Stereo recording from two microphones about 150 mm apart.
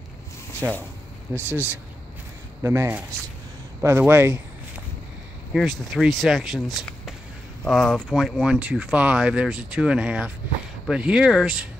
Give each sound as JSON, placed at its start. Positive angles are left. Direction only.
{"t": 0.6, "sound": "speech", "side_deg": -15}
{"t": 5.5, "sound": "speech", "side_deg": 0}